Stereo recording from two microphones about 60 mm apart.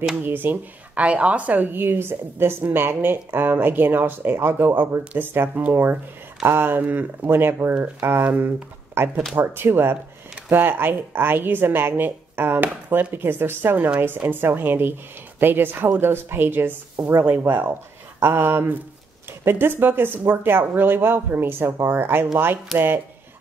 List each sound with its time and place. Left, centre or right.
0.2 s speech: right
1.0 s speech: right
22.7 s speech: centre